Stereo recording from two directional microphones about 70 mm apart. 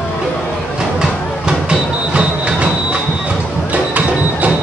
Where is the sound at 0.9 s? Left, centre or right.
Centre.